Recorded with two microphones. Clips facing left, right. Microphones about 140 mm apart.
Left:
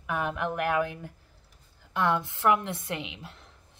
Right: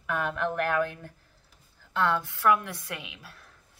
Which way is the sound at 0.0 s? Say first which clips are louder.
Right 1 dB; 15° left (ahead or behind).